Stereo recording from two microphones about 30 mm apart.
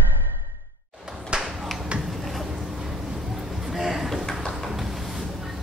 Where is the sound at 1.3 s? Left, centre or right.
Right.